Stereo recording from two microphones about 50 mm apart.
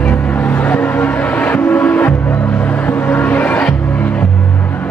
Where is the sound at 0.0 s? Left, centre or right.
Left.